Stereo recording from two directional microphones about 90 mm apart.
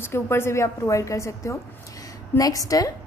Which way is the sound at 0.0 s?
25° left (ahead or behind).